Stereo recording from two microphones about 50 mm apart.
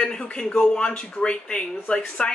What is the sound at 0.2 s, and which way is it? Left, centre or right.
Speech, centre.